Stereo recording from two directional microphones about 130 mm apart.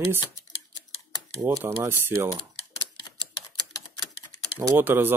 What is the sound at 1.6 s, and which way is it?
Speech, 15° right (ahead or behind).